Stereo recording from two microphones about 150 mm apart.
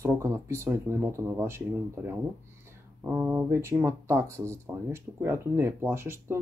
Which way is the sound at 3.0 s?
15° right (ahead or behind).